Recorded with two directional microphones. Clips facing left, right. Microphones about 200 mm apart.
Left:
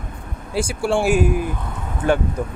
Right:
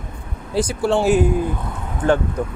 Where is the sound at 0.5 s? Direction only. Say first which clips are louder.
Right 2 dB; 10° left (ahead or behind).